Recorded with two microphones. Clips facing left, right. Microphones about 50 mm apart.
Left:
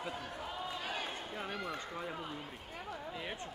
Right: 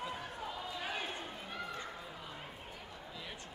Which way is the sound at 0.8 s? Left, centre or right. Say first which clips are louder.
Right 2 dB; centre.